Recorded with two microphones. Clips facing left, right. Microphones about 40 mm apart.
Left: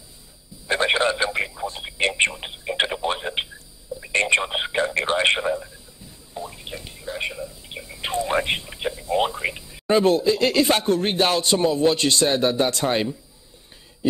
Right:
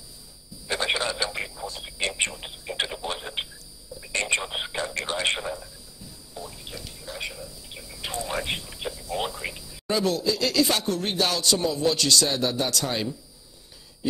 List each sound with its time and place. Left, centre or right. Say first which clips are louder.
0.7 s speech: left 6 dB; left